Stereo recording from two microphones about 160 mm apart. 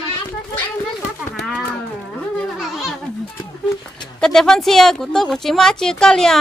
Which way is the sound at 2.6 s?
Centre (ahead or behind).